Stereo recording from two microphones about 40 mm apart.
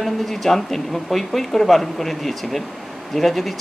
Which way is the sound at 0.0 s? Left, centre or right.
Centre.